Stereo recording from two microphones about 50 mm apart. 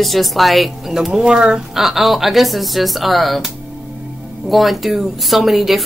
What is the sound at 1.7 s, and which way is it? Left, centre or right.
A woman's voice, centre.